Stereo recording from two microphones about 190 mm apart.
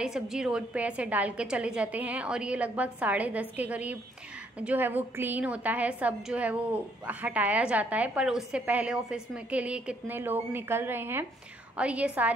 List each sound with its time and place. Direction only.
0.0 s a woman's voice: 5° right (ahead or behind)